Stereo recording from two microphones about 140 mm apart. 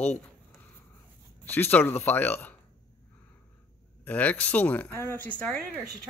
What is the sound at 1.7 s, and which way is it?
Speech, 15° left (ahead or behind).